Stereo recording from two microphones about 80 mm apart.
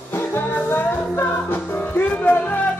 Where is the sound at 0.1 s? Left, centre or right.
Left.